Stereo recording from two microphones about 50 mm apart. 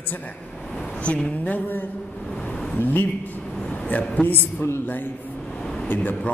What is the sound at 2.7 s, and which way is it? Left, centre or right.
Speech, left.